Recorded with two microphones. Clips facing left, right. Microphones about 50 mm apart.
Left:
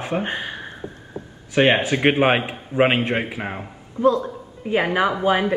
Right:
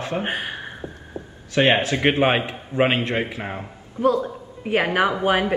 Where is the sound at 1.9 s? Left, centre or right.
Left.